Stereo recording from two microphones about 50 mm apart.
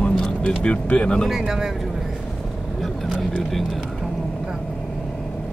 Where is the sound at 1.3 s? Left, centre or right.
Centre.